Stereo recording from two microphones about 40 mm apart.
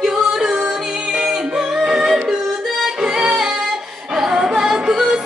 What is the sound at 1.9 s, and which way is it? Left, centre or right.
Music, centre.